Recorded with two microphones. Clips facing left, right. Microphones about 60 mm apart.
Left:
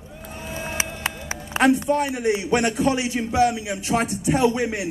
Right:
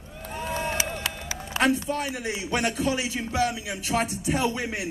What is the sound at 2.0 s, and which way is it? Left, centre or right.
A man's voice, centre.